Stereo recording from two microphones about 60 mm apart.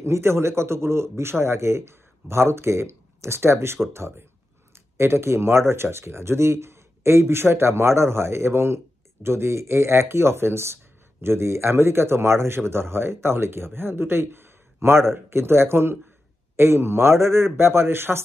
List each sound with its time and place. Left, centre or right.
0.0 s speech: right
4.9 s speech: right